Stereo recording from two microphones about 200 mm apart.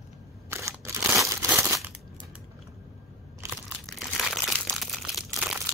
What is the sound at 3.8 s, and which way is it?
Crumpling, centre (ahead or behind).